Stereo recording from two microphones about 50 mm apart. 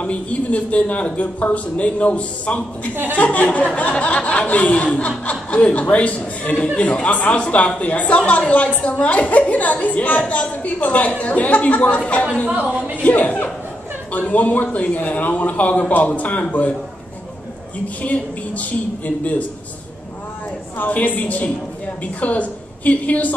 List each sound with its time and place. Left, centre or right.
0.0 s a woman's voice: left
12.4 s speech: right
13.0 s a woman's voice: left
18.0 s a woman's voice: left
20.7 s a woman's voice: left